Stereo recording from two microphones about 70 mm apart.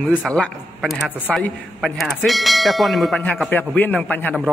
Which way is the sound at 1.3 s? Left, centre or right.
Centre.